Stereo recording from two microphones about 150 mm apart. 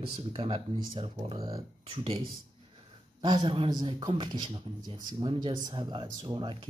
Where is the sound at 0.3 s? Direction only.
40° right (ahead or behind).